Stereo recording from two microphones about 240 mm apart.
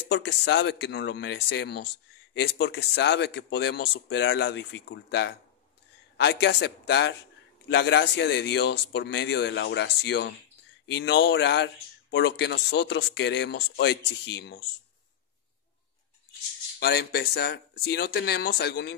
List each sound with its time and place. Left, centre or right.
0.1 s speech: left
16.8 s speech: left